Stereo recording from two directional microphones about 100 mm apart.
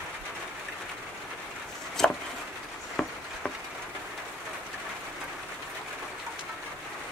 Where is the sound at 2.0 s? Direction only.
5° left (ahead or behind).